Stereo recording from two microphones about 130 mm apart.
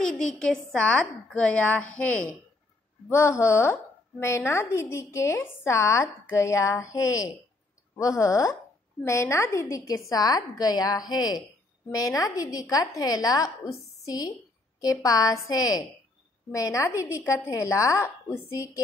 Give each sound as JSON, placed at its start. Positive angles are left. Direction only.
{"t": 0.0, "sound": "speech", "side_deg": 5}
{"t": 3.1, "sound": "a woman's voice", "side_deg": 20}